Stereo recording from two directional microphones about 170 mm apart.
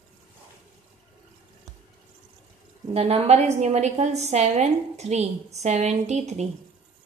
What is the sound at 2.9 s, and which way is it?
A woman's voice, 35° right (ahead or behind).